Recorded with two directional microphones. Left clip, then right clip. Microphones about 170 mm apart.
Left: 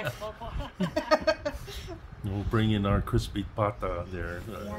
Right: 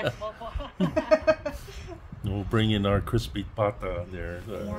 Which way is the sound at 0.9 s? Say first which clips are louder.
Right 3 dB; 70° left (ahead or behind).